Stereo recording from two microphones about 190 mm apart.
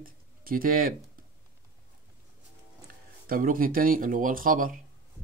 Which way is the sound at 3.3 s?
45° right (ahead or behind).